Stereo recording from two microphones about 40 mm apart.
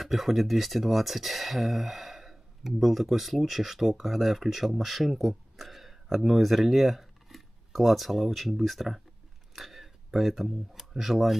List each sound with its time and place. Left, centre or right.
0.0 s speech: centre